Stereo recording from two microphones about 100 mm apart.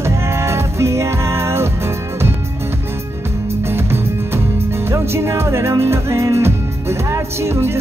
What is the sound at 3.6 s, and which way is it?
Music, 25° right (ahead or behind).